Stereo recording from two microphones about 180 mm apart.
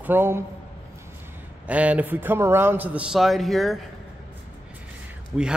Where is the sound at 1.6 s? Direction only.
5° right (ahead or behind).